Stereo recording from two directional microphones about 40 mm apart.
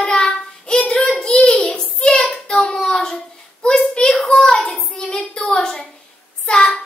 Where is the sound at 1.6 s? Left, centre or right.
Centre.